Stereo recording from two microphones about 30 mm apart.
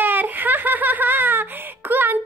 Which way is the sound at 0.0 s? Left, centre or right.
Right.